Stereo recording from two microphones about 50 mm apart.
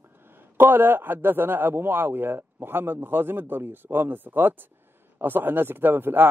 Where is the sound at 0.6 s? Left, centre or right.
Right.